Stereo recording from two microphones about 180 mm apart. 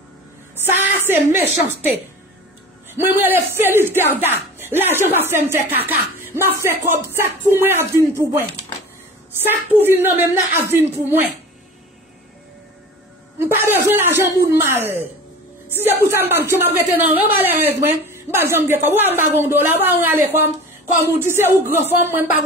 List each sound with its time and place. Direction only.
0.7 s a woman's voice: 10° right (ahead or behind)
13.4 s a woman's voice: 10° right (ahead or behind)